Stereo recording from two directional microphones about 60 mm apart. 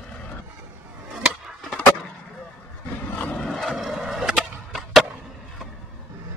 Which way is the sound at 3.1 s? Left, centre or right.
Left.